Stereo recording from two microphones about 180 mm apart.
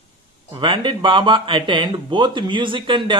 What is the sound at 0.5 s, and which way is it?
Speech, 25° right (ahead or behind).